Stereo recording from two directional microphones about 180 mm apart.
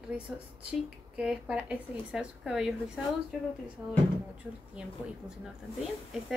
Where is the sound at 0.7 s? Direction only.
5° right (ahead or behind).